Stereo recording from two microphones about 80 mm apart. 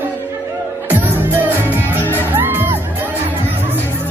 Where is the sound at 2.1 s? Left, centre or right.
Right.